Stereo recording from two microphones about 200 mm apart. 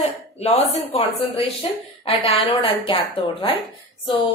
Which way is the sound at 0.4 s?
30° left (ahead or behind).